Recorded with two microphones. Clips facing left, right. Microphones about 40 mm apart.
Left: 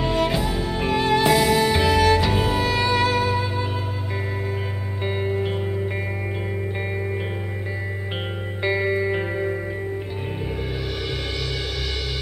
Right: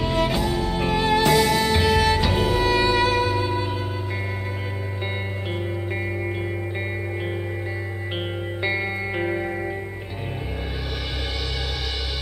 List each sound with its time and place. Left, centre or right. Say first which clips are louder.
0.0 s music: left 1 dB; centre
8.6 s music: left 5 dB; centre